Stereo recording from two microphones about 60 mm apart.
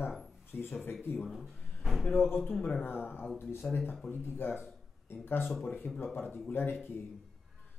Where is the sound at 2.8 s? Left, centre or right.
Left.